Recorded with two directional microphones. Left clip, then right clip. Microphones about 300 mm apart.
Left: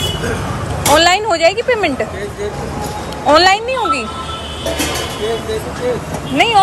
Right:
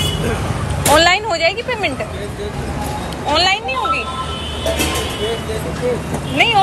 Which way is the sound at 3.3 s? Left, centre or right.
Centre.